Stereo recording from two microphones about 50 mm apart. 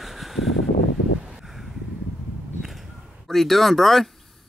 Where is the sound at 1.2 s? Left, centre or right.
Centre.